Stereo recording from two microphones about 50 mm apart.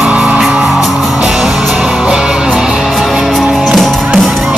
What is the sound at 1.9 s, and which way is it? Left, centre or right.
Music, centre.